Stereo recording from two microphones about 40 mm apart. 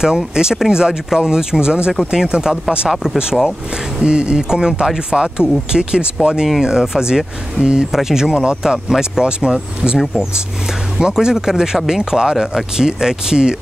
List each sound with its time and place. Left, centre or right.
0.0 s speech: centre
2.9 s speech: centre
4.0 s speech: right
7.9 s speech: centre
11.0 s speech: centre